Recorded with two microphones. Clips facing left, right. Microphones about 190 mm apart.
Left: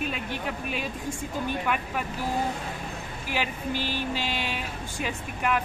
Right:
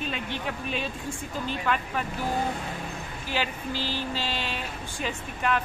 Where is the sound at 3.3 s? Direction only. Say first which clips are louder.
Left 1 dB; 15° left (ahead or behind).